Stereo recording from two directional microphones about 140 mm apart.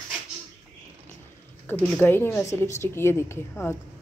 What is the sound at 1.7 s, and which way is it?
Speech, 15° left (ahead or behind).